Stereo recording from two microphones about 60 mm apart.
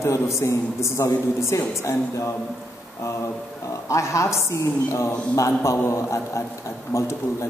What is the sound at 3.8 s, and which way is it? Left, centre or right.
A man's voice, left.